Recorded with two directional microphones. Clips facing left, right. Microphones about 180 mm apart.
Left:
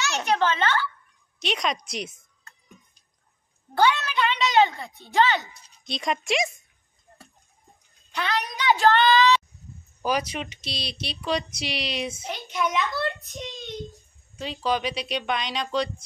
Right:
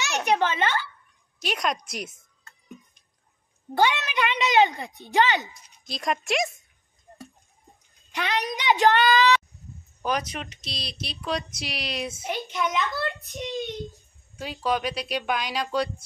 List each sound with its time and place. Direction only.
0.2 s a woman's voice: 15° right (ahead or behind)
1.4 s speech: centre (ahead or behind)
3.7 s a woman's voice: 20° right (ahead or behind)
5.9 s speech: centre (ahead or behind)
8.1 s a woman's voice: 20° right (ahead or behind)
10.0 s speech: 5° left (ahead or behind)
14.4 s speech: 5° right (ahead or behind)